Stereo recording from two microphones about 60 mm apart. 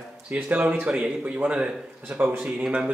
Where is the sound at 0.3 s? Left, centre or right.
Right.